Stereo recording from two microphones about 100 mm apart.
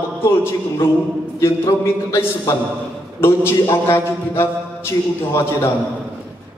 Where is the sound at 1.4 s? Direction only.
25° left (ahead or behind).